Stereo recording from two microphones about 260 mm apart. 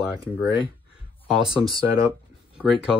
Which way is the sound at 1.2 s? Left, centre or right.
Centre.